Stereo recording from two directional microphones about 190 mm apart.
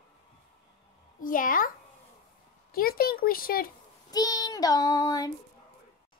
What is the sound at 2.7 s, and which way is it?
Speech, 50° left (ahead or behind).